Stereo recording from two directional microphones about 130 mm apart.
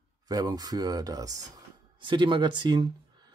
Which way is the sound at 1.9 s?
40° right (ahead or behind).